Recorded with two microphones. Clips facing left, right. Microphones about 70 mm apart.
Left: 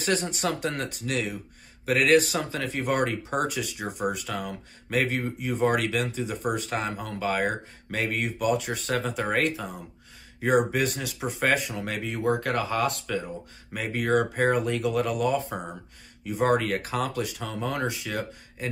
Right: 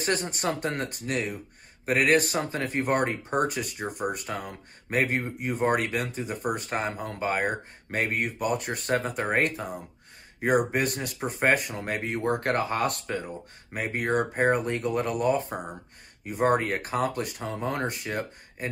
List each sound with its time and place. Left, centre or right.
0.0 s speech: right
3.7 s speech: centre
4.1 s speech: right